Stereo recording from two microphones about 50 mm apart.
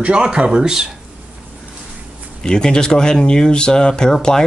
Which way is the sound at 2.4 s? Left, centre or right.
Centre.